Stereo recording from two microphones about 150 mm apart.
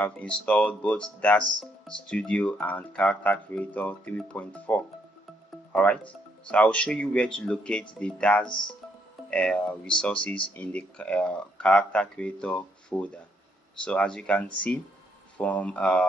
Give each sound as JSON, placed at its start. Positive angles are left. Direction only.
{"t": 0.0, "sound": "speech", "side_deg": 10}